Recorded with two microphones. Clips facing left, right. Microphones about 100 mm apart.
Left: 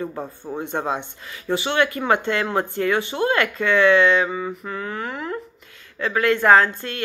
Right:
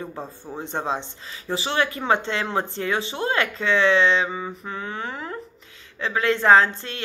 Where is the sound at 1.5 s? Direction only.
25° right (ahead or behind).